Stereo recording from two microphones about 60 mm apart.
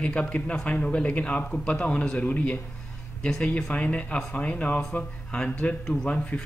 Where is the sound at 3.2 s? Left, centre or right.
Centre.